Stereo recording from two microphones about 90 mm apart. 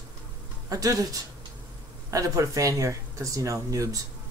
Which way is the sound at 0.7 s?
40° right (ahead or behind).